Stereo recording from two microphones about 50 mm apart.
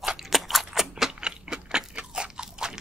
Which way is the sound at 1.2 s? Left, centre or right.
Centre.